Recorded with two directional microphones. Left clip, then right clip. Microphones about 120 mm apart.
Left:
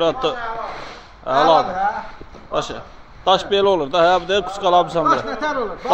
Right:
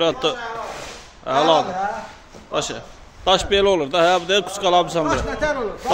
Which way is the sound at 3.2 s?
15° right (ahead or behind).